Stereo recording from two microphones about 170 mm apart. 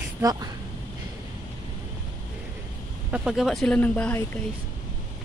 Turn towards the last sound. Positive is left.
turn(degrees=10)  # may be behind; listen again after turning